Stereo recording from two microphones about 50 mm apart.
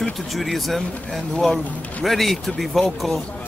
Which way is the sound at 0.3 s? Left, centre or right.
Centre.